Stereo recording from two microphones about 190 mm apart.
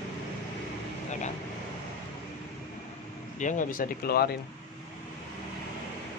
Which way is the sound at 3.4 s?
40° left (ahead or behind).